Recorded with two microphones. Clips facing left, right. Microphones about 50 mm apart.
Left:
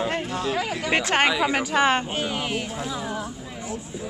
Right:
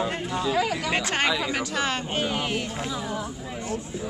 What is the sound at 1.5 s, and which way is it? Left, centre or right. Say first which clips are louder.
Speech: left 6 dB; left.